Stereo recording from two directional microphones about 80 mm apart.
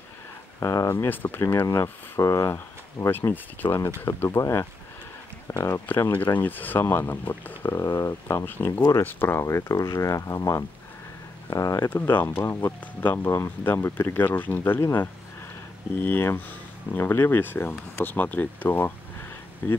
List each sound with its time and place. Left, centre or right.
0.6 s speech: left
1.1 s speech: left
1.4 s speech: left
2.5 s speech: left
5.7 s speech: left
7.7 s speech: left
9.4 s speech: left
11.9 s speech: left